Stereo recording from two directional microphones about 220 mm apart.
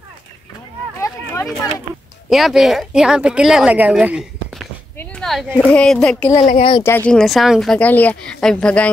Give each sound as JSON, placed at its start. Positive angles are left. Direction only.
{"t": 1.0, "sound": "a sound", "side_deg": 15}
{"t": 2.2, "sound": "speech", "side_deg": 0}
{"t": 4.9, "sound": "a sound", "side_deg": 5}
{"t": 5.7, "sound": "speech", "side_deg": 5}
{"t": 6.3, "sound": "speech", "side_deg": 30}
{"t": 7.1, "sound": "speech", "side_deg": 0}